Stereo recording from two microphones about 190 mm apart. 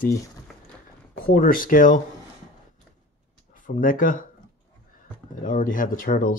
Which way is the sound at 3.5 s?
45° left (ahead or behind).